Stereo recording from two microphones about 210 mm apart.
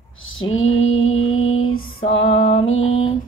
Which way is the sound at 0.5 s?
70° left (ahead or behind).